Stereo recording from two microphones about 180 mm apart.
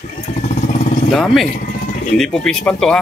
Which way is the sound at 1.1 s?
Centre (ahead or behind).